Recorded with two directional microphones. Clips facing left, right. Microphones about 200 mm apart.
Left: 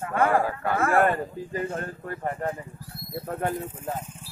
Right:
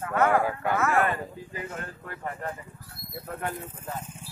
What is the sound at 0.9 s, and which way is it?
Speech, 45° left (ahead or behind).